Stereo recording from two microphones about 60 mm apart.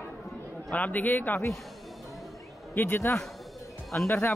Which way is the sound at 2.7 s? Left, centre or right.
Left.